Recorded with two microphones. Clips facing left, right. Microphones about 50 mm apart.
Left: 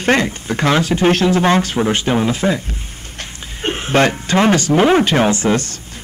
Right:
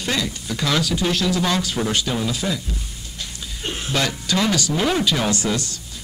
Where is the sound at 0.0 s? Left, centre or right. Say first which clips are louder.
Left 9 dB; left.